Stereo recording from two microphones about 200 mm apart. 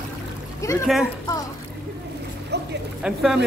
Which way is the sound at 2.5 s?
55° right (ahead or behind).